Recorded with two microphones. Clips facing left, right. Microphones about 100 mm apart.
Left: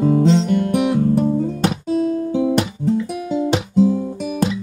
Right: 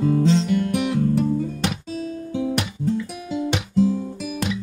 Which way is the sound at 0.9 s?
35° left (ahead or behind).